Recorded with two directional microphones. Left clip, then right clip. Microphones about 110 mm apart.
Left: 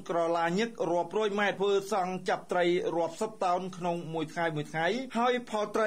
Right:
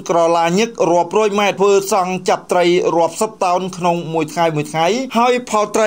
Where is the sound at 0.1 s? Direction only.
30° right (ahead or behind).